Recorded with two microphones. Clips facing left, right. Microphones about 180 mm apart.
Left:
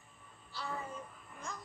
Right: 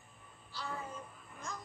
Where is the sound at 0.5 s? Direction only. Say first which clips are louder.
Left 1 dB; centre (ahead or behind).